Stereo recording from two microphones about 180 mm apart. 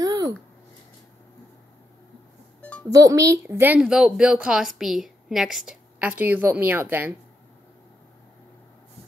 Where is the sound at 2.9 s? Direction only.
20° right (ahead or behind).